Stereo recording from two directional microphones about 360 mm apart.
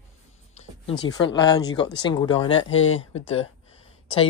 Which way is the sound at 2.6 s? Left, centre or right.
Left.